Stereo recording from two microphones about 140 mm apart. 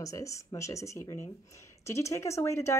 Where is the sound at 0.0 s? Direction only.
25° left (ahead or behind).